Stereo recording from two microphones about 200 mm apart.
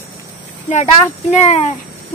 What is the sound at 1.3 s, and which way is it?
Speech, 35° left (ahead or behind).